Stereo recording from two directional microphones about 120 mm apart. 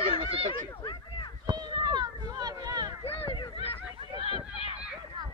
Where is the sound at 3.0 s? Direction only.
50° left (ahead or behind).